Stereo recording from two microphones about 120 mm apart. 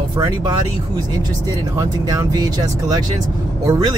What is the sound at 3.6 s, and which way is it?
Speech, 35° right (ahead or behind).